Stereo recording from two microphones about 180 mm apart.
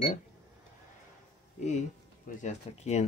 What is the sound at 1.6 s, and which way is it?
Speech, 40° left (ahead or behind).